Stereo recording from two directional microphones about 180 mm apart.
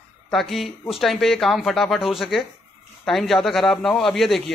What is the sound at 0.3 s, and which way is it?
Speech, centre (ahead or behind).